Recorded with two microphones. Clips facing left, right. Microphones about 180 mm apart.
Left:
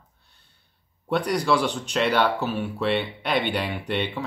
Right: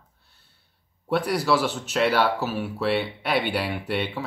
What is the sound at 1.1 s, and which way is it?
Speech, 5° right (ahead or behind).